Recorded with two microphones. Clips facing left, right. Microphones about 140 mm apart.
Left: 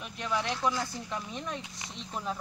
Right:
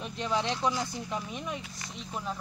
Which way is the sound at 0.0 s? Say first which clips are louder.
Right 2 dB; 25° right (ahead or behind).